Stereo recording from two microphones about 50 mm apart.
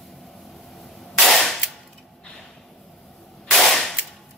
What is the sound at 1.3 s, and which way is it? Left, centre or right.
Cap gun, centre.